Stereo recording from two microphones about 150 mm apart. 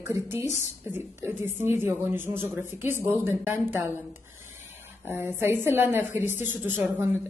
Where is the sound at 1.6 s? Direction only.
15° right (ahead or behind).